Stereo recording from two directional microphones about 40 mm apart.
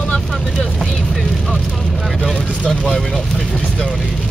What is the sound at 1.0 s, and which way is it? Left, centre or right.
Vehicle, centre.